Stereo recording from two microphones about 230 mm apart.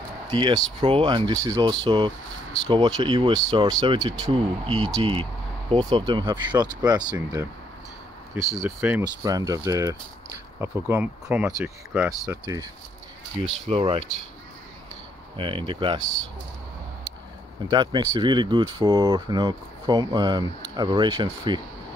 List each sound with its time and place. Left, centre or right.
0.3 s speech: right
8.6 s speech: centre
13.7 s speech: right
15.3 s speech: right
17.6 s speech: centre